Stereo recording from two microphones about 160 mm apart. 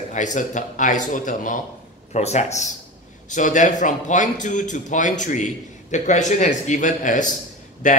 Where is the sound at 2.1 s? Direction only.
45° left (ahead or behind).